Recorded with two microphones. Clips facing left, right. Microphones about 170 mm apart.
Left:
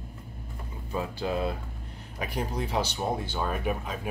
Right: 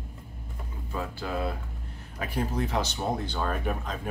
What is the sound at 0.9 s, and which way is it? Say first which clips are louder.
Speech: left 3 dB; 20° left (ahead or behind).